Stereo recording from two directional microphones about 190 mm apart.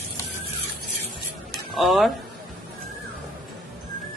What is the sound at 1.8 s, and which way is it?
Speech, centre (ahead or behind).